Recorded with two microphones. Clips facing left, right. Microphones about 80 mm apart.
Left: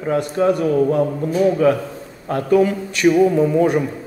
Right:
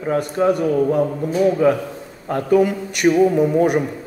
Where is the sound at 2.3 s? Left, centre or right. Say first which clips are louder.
Even; right.